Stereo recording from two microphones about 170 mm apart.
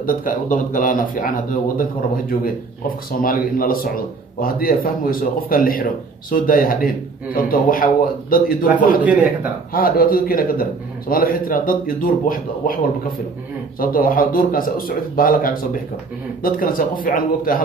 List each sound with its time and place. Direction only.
0.0 s a man's voice: 55° left (ahead or behind)
9.0 s speech: 10° right (ahead or behind)
9.7 s a man's voice: 55° left (ahead or behind)
13.7 s a man's voice: 55° left (ahead or behind)